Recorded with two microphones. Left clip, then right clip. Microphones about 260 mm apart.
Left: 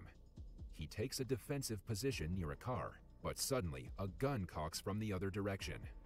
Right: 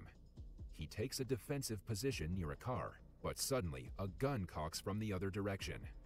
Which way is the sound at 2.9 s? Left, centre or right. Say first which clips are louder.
Right 1 dB; left.